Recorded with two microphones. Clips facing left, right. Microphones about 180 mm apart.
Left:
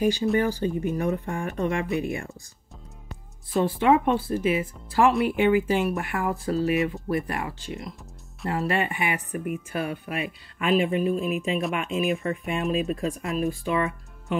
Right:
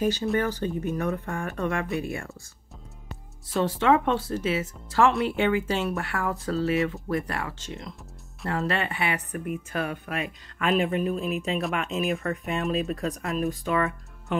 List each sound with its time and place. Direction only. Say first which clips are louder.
0.0 s speech: left 2 dB; 15° left (ahead or behind)
3.8 s speech: left 1 dB; 15° left (ahead or behind)
10.1 s speech: left 1 dB; 40° right (ahead or behind)
13.2 s speech: left 1 dB; centre (ahead or behind)